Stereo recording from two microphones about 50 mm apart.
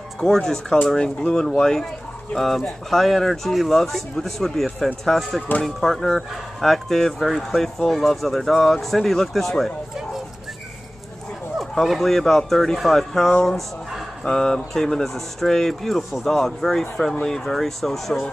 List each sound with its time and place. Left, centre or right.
0.2 s speech: centre
11.7 s speech: centre
16.9 s speech: centre